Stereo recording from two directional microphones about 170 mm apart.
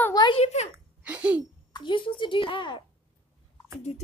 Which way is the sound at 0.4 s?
40° left (ahead or behind).